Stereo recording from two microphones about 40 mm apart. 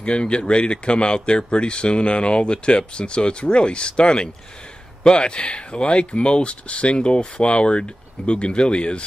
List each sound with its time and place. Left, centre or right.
0.0 s speech: left